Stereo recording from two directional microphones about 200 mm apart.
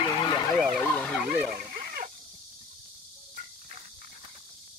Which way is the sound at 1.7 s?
50° right (ahead or behind).